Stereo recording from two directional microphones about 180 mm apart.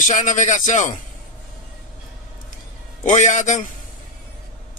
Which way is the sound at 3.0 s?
45° left (ahead or behind).